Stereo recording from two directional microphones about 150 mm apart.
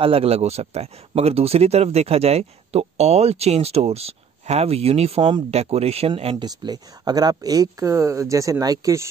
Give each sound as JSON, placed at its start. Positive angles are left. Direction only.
{"t": 0.0, "sound": "speech", "side_deg": -40}
{"t": 6.3, "sound": "speech", "side_deg": -25}